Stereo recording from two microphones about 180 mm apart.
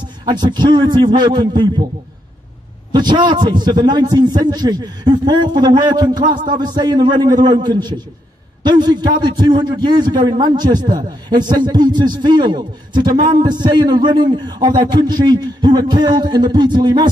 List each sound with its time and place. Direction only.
0.0 s a man's voice: 25° right (ahead or behind)
2.9 s a man's voice: 25° right (ahead or behind)
6.3 s a man's voice: 45° right (ahead or behind)
6.6 s a man's voice: 25° right (ahead or behind)